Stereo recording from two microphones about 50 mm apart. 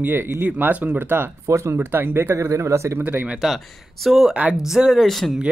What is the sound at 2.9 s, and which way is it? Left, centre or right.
Speech, right.